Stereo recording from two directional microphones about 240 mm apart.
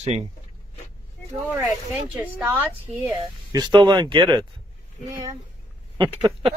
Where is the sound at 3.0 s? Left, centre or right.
Centre.